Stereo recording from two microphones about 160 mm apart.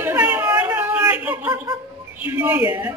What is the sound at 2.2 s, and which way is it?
Speech, 10° right (ahead or behind).